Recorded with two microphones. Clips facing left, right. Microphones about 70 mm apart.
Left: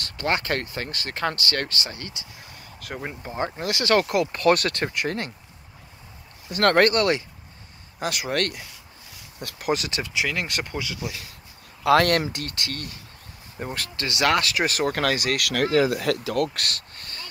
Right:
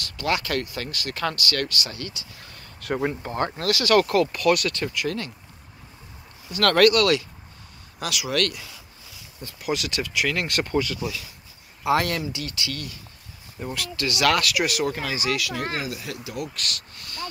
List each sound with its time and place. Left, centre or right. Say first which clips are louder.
0.0 s speech: even; left
2.8 s speech: right 8 dB; centre
3.2 s speech: right 2 dB; centre
4.4 s speech: left 1 dB; left
6.6 s speech: right 1 dB; left
9.6 s speech: left 2 dB; left
9.8 s speech: right 1 dB; left
10.2 s speech: right 2 dB; centre
11.8 s speech: left 4 dB; left
13.7 s speech: right 1 dB; left
15.0 s speech: left 3 dB; left
16.4 s a sound: left 2 dB; left